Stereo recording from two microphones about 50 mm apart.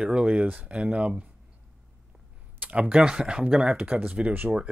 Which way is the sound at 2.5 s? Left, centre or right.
Right.